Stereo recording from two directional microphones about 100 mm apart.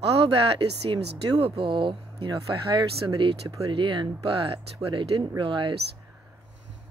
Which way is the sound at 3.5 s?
45° right (ahead or behind).